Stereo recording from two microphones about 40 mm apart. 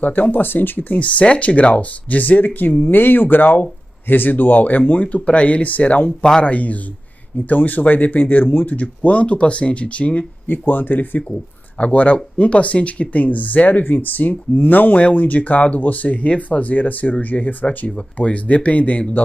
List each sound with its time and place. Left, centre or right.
0.0 s speech: left
10.4 s speech: left
11.8 s speech: left
17.6 s speech: left